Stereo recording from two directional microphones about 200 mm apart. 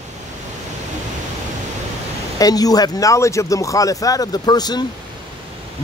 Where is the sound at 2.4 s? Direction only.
20° left (ahead or behind).